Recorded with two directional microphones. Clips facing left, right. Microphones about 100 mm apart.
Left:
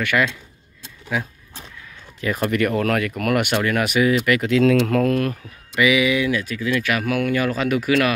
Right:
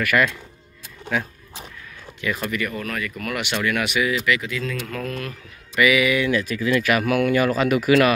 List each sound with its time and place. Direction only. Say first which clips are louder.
0.0 s speech: even; 20° left (ahead or behind)
2.4 s speech: left 7 dB; 60° left (ahead or behind)
3.7 s speech: left 6 dB; 40° left (ahead or behind)
4.4 s speech: left 12 dB; 75° left (ahead or behind); by 5.3 s 55° left (ahead or behind)
5.8 s speech: left 1 dB; 20° left (ahead or behind)
6.3 s speech: right 2 dB; centre (ahead or behind)